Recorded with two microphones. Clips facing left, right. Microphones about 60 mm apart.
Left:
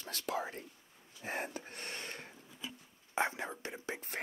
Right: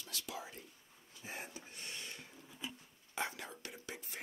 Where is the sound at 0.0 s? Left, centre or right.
Left.